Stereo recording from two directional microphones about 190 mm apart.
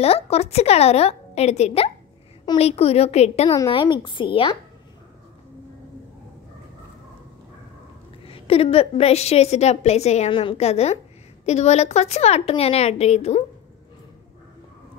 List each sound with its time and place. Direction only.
0.0 s a woman's voice: 30° left (ahead or behind)
3.4 s a woman's voice: 20° left (ahead or behind)
8.3 s a woman's voice: 30° left (ahead or behind)